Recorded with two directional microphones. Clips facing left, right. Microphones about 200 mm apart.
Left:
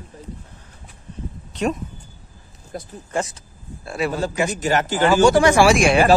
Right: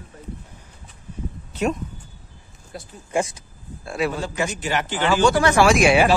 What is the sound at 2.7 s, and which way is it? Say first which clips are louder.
Speech: left 5 dB; 45° left (ahead or behind).